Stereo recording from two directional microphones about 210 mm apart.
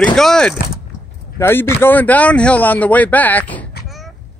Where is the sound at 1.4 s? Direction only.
10° left (ahead or behind).